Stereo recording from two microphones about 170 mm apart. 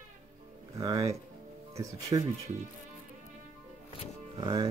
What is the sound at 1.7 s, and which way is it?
Speech, 20° right (ahead or behind).